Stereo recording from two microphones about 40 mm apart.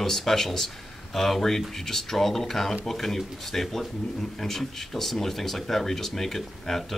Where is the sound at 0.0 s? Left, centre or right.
Centre.